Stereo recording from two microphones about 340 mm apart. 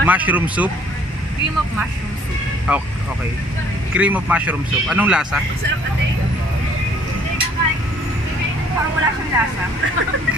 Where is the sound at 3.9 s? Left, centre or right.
Centre.